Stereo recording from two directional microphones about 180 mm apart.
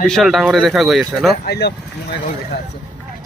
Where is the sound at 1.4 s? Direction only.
65° left (ahead or behind).